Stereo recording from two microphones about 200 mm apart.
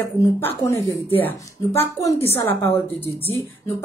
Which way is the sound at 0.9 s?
15° left (ahead or behind).